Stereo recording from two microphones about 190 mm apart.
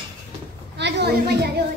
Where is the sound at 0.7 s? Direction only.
65° right (ahead or behind).